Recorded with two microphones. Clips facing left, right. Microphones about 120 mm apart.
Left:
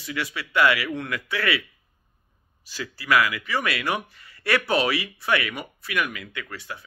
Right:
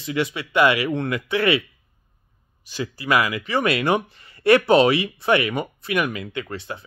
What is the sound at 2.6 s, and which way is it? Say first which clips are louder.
Speech: right 2 dB; 20° right (ahead or behind).